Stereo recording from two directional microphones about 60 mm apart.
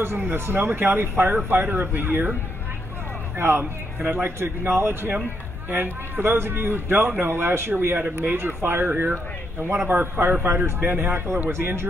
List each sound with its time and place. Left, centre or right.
0.0 s speech: right
3.3 s speech: right